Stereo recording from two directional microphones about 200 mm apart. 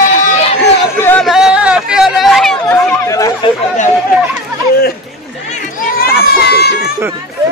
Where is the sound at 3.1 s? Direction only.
15° left (ahead or behind).